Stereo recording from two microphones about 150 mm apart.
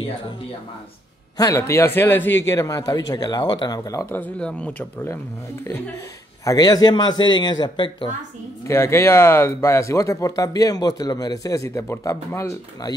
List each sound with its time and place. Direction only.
1.4 s a man's voice: 20° left (ahead or behind)
6.4 s speech: 25° left (ahead or behind)
8.6 s speech: 20° left (ahead or behind)